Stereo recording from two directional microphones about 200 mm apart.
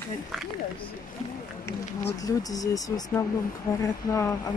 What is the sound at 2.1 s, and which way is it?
Speech, 20° left (ahead or behind).